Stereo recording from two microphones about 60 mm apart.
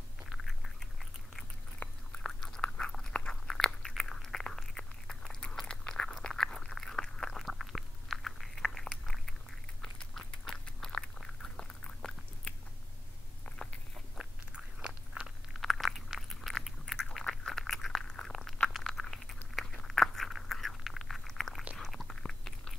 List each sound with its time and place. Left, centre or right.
0.4 s cat: centre
1.8 s biting: left
2.2 s biting: centre
3.1 s chewing: centre
10.1 s a sound: centre
14.1 s biting: centre
15.5 s chewing: centre
16.4 s a sound: centre
22.2 s chewing: centre